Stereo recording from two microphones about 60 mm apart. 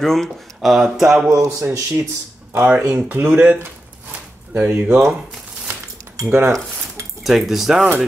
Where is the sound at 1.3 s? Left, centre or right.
Right.